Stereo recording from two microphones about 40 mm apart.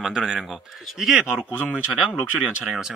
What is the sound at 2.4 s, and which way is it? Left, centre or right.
Speech, centre.